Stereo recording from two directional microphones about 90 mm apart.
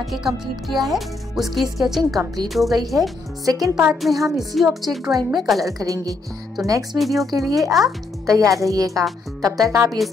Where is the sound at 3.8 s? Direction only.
5° right (ahead or behind).